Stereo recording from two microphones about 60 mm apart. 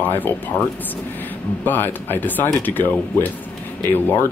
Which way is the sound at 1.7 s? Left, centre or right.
Left.